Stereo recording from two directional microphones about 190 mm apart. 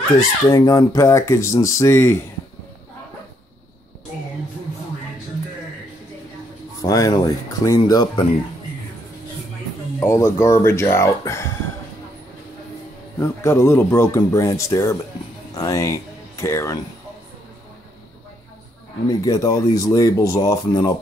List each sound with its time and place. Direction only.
0.5 s speech: 20° left (ahead or behind)
6.8 s speech: 20° left (ahead or behind)
9.9 s speech: 15° left (ahead or behind)
13.4 s speech: 15° left (ahead or behind)
19.0 s speech: 20° left (ahead or behind)